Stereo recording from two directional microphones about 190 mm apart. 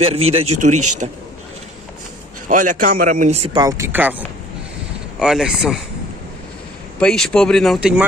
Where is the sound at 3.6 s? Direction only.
15° right (ahead or behind).